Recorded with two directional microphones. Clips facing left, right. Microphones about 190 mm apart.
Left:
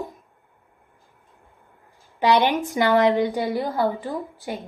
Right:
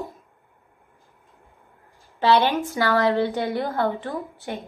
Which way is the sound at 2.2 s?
15° left (ahead or behind).